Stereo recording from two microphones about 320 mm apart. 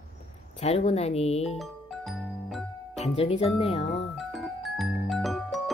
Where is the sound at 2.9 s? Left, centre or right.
Centre.